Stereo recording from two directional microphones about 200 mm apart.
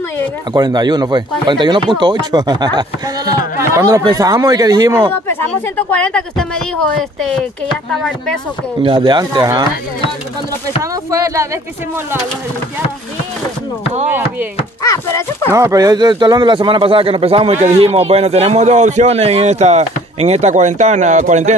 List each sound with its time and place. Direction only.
0.5 s speech: 20° right (ahead or behind)
5.3 s speech: 5° left (ahead or behind)
8.8 s speech: 25° right (ahead or behind)
10.8 s speech: 15° right (ahead or behind)
14.8 s a child's voice: 15° left (ahead or behind)
15.5 s a man's voice: 15° right (ahead or behind); by 21.5 s 35° right (ahead or behind)